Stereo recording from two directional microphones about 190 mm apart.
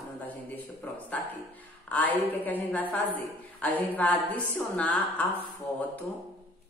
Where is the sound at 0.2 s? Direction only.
10° left (ahead or behind).